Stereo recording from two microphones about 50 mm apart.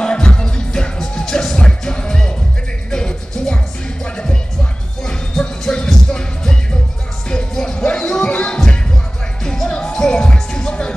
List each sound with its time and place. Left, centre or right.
0.0 s music: centre